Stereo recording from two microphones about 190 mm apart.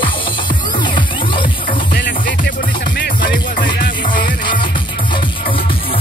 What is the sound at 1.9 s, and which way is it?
Music, 60° left (ahead or behind).